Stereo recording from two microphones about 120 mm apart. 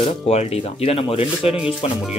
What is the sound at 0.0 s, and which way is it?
Speech, 60° left (ahead or behind).